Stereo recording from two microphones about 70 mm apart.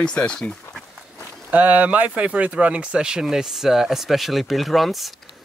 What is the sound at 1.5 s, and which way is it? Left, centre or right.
Speech, right.